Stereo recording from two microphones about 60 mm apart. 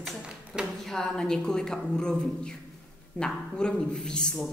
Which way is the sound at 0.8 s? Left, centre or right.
Centre.